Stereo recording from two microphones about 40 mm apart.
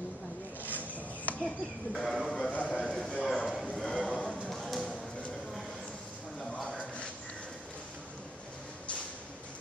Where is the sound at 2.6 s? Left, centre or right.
Centre.